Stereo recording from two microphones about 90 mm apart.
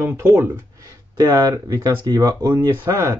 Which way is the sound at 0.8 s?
40° right (ahead or behind).